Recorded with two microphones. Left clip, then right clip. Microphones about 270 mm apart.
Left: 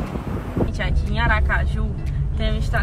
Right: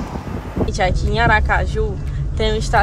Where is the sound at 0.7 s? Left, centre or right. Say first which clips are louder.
Right 9 dB; centre.